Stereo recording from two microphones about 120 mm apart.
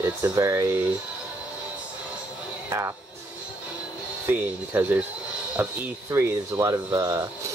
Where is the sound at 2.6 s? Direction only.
25° right (ahead or behind).